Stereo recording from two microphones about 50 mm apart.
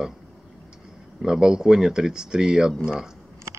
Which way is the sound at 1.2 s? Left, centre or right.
Centre.